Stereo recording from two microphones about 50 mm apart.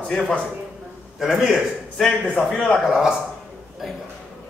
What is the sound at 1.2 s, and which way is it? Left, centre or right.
Speech, centre.